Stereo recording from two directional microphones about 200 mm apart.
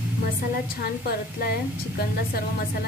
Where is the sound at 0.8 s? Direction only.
50° left (ahead or behind).